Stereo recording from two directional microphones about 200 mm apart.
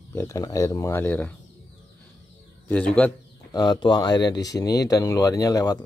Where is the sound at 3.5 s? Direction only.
20° left (ahead or behind).